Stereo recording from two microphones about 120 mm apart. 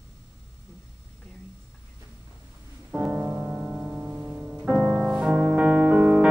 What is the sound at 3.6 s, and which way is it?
Music, centre (ahead or behind).